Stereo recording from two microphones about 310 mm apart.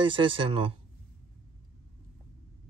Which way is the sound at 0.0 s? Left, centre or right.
Centre.